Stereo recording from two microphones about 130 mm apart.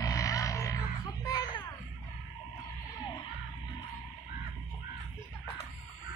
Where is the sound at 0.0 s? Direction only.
25° left (ahead or behind).